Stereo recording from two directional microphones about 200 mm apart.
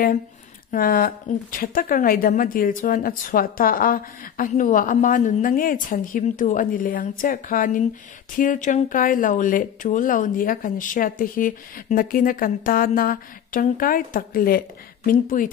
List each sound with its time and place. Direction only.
0.7 s speech: 45° left (ahead or behind)